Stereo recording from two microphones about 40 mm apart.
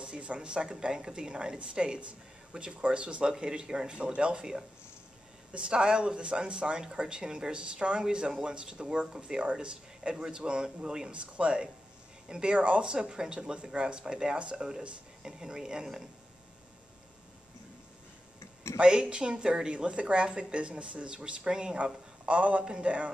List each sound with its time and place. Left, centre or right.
0.0 s a woman's voice: right
12.5 s a woman's voice: right; by 16.1 s centre
18.8 s a woman's voice: right
22.3 s a woman's voice: right